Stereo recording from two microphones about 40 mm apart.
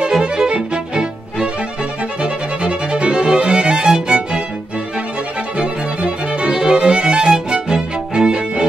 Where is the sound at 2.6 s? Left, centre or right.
Right.